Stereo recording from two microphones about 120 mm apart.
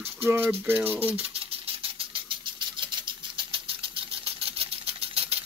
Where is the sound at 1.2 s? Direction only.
55° right (ahead or behind).